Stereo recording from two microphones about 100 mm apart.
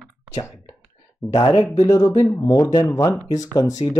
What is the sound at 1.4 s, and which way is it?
Speech, 50° left (ahead or behind).